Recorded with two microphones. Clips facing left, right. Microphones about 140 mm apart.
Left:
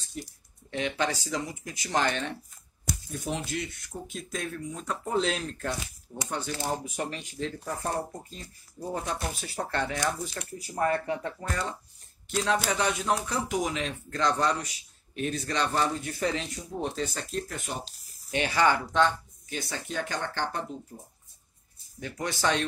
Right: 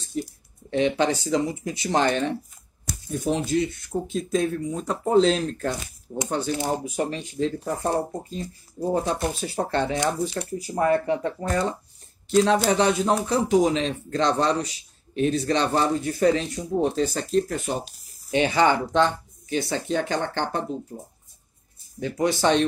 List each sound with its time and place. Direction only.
0.7 s speech: 30° right (ahead or behind)
22.0 s speech: 30° right (ahead or behind)